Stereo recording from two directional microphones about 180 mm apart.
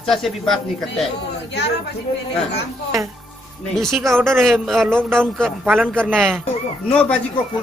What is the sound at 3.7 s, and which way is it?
Speech, centre (ahead or behind).